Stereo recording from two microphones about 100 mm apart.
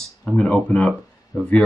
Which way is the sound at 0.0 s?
5° left (ahead or behind).